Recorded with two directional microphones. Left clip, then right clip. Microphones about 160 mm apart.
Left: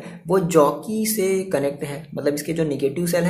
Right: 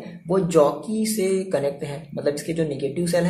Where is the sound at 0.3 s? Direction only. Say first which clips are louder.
Left 1 dB; 30° left (ahead or behind).